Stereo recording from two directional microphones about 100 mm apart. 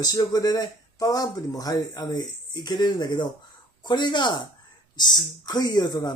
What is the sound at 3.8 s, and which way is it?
Mantra, 45° left (ahead or behind).